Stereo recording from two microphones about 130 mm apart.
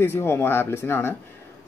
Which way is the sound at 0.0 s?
20° left (ahead or behind).